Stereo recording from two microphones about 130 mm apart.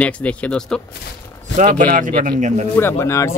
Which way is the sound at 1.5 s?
90° right.